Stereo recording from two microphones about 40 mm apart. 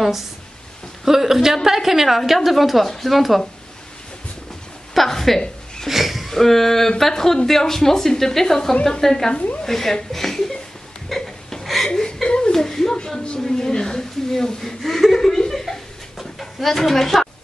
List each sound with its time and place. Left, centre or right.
1.0 s a woman's voice: centre
4.9 s a woman's voice: centre
5.9 s a sound: centre
6.3 s a woman's voice: centre
10.1 s a sound: centre
11.6 s chuckle: centre
11.9 s chuckle: centre
12.5 s a sound: centre
13.5 s chuckle: centre